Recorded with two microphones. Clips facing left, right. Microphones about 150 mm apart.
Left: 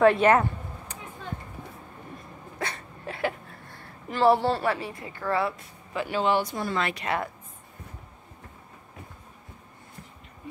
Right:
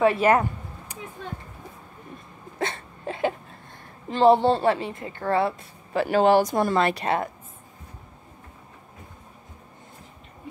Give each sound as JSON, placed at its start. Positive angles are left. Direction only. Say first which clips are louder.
{"t": 0.0, "sound": "a sound", "louder": "even", "side_deg": -5}
{"t": 2.6, "sound": "hiccup", "louder": "right 5 dB", "side_deg": -25}
{"t": 5.0, "sound": "a woman's voice", "louder": "right 4 dB", "side_deg": -30}
{"t": 5.9, "sound": "speech", "louder": "right 7 dB", "side_deg": -40}